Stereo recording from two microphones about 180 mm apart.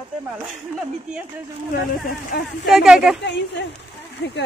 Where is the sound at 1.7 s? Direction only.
50° left (ahead or behind).